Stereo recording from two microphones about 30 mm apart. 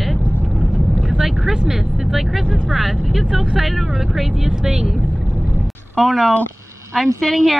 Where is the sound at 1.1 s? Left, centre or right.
Centre.